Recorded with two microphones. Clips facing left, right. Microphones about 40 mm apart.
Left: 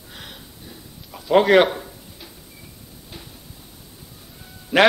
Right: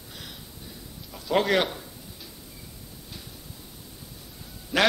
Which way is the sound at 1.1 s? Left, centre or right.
Left.